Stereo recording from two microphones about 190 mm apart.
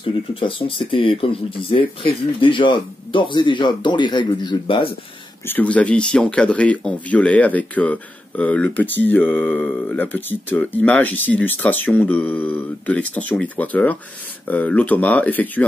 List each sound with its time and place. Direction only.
0.0 s speech: 30° left (ahead or behind)
5.5 s speech: 5° left (ahead or behind)